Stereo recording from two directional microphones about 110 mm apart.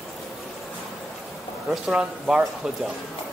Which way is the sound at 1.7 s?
5° right (ahead or behind).